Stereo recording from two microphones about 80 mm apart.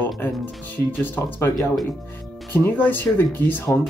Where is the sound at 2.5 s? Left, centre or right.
Left.